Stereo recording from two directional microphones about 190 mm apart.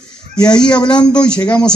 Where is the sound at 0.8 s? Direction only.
20° left (ahead or behind).